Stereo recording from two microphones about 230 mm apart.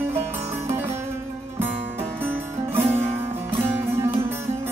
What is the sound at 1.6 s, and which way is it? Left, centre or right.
Music, centre.